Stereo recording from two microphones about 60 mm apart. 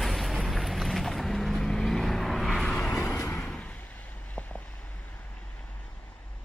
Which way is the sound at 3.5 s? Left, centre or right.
Left.